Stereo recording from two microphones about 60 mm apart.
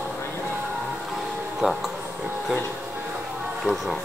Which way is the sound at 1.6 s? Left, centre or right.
Centre.